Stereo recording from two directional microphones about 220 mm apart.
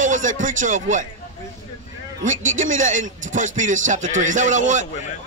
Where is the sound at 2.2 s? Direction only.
35° right (ahead or behind).